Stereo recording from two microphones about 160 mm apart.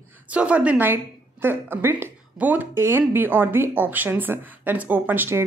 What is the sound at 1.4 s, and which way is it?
A woman's voice, 15° right (ahead or behind).